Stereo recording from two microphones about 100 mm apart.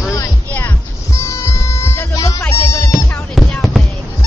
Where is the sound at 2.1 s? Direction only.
35° left (ahead or behind).